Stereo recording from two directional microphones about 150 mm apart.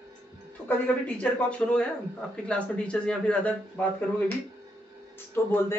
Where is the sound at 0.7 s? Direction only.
5° left (ahead or behind).